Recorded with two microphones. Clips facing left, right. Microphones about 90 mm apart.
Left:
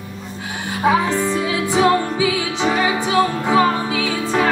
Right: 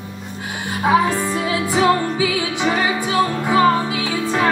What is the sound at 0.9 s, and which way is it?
Music, 20° right (ahead or behind).